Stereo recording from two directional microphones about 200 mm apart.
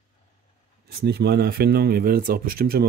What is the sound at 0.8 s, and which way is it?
Speech, 55° right (ahead or behind).